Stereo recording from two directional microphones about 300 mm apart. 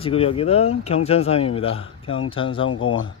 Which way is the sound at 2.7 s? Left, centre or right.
Left.